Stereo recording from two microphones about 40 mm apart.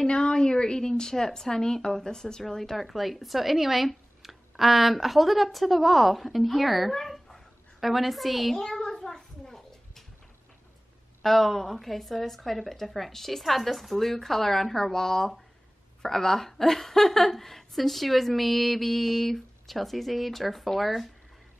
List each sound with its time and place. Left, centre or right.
0.0 s a woman's voice: left; by 8.5 s centre
8.5 s a sound: centre
11.2 s a woman's voice: centre